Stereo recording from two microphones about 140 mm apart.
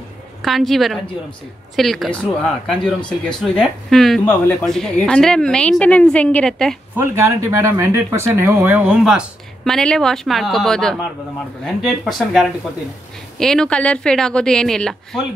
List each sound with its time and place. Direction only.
0.4 s a woman's voice: centre (ahead or behind)
7.0 s a woman's voice: 20° right (ahead or behind); by 15.2 s 5° left (ahead or behind)